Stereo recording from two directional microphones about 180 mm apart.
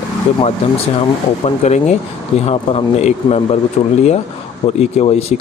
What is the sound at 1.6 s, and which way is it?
Speech, 40° left (ahead or behind).